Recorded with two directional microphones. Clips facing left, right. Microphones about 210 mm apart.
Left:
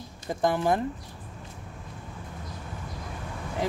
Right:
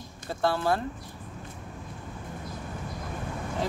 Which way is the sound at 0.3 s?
15° left (ahead or behind).